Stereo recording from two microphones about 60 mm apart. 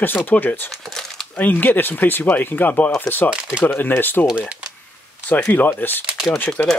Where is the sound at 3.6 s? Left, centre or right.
Left.